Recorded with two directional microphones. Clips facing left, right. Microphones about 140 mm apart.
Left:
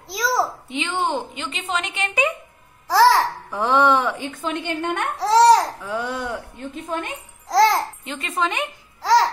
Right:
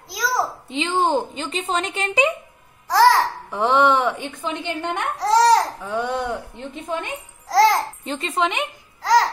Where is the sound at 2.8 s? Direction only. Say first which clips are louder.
Even; centre (ahead or behind).